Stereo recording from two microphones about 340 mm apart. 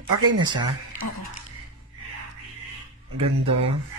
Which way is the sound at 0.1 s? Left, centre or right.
Right.